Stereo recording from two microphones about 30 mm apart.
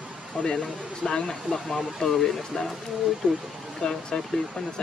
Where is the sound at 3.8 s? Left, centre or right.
Centre.